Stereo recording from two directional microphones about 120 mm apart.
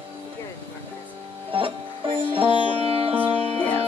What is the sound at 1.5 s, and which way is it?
Music, 45° right (ahead or behind).